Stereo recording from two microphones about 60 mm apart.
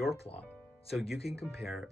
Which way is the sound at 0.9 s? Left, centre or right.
Centre.